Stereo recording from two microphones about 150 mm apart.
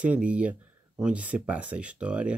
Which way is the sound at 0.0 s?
10° right (ahead or behind).